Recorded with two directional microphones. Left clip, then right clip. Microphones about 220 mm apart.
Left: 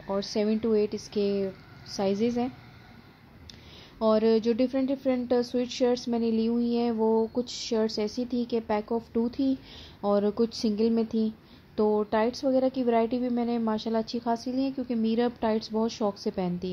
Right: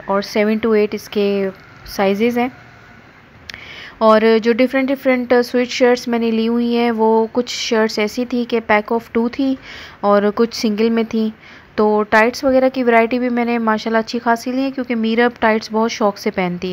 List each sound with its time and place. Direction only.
0.2 s speech: 10° right (ahead or behind)
3.8 s speech: 10° right (ahead or behind)
7.0 s a sound: 30° right (ahead or behind)
7.4 s speech: 10° right (ahead or behind)
10.4 s speech: 10° right (ahead or behind)
11.8 s a woman's voice: 30° right (ahead or behind)
12.1 s speech: 10° right (ahead or behind)